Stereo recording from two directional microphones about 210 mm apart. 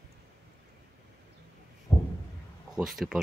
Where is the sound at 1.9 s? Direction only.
20° left (ahead or behind).